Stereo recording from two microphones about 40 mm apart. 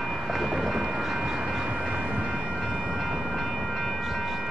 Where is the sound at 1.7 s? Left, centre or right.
Right.